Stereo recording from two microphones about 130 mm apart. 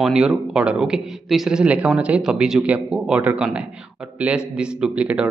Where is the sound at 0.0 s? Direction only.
5° right (ahead or behind).